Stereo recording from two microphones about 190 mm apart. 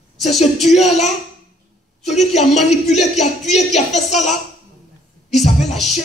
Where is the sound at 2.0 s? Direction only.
Centre (ahead or behind).